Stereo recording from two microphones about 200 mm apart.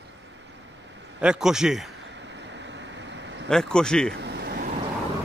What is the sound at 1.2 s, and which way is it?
Speech, 5° right (ahead or behind).